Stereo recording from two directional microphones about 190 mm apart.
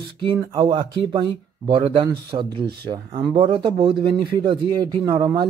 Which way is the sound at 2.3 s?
30° right (ahead or behind).